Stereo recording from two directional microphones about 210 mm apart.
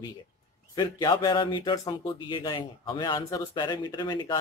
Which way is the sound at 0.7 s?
20° left (ahead or behind).